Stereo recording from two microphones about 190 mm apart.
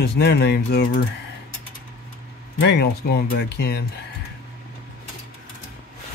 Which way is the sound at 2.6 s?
60° left (ahead or behind).